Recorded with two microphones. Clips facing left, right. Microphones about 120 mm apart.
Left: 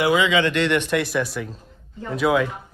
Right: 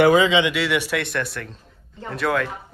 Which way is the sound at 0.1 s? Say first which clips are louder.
Right 3 dB; 35° right (ahead or behind).